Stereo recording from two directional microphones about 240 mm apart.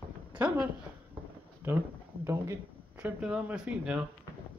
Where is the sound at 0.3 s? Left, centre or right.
Centre.